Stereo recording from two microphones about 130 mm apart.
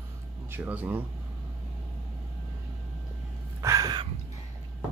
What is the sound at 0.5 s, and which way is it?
Speech, 15° right (ahead or behind).